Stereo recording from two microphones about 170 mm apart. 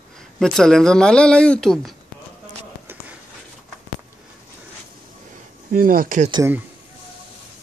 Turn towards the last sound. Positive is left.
turn(degrees=-50)  # may be behind; listen again after turning